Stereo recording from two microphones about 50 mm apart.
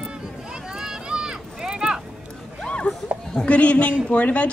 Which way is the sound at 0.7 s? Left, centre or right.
Centre.